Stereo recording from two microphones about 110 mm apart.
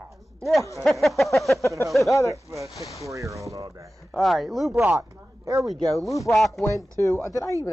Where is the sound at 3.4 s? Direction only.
30° right (ahead or behind).